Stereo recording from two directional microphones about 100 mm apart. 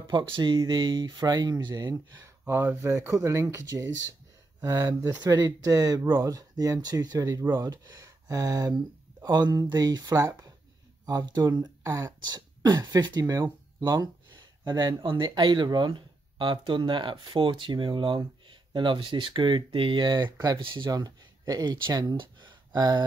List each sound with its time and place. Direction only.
0.0 s speech: 55° right (ahead or behind)
1.0 s speech: 40° right (ahead or behind)
12.2 s speech: 45° right (ahead or behind)
15.0 s speech: 55° right (ahead or behind); by 20.6 s 40° right (ahead or behind)
20.6 s speech: 50° right (ahead or behind)
22.1 s a sound: 55° right (ahead or behind)